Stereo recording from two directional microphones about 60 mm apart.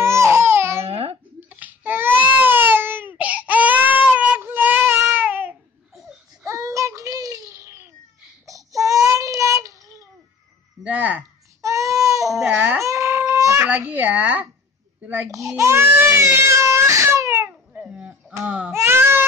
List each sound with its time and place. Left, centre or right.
0.0 s baby cry: right
1.5 s baby cry: right
6.4 s child singing: right
7.5 s baby cry: right
8.5 s child singing: right
10.8 s a sound: right
11.6 s baby cry: right
12.4 s baby cry: right
12.8 s a sound: right
13.7 s a sound: right
15.3 s baby cry: right
17.5 s dog: right
18.7 s a sound: right